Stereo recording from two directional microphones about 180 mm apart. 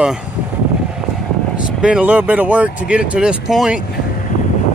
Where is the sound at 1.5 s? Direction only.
5° right (ahead or behind).